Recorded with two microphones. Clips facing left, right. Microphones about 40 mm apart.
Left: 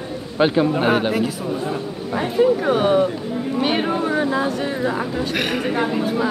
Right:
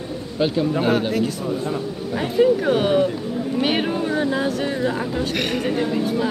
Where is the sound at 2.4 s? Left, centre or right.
Centre.